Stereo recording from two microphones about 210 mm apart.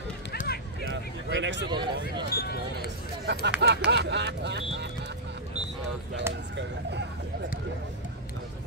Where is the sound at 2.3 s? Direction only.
50° left (ahead or behind).